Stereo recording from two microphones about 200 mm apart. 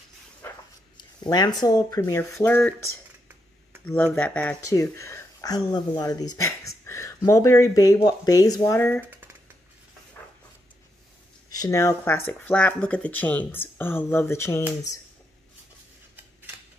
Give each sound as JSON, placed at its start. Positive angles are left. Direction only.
{"t": 1.2, "sound": "speech", "side_deg": 20}
{"t": 3.8, "sound": "speech", "side_deg": 10}
{"t": 11.5, "sound": "speech", "side_deg": 15}